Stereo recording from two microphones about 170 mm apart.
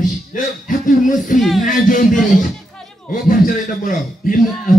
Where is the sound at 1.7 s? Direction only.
50° left (ahead or behind).